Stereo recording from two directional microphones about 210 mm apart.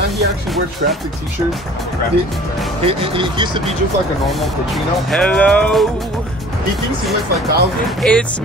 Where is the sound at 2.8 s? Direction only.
25° right (ahead or behind).